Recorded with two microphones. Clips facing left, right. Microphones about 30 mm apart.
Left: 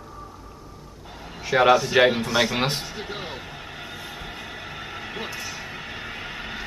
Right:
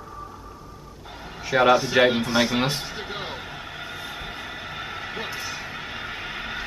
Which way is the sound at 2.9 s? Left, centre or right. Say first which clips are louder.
Right 1 dB; centre.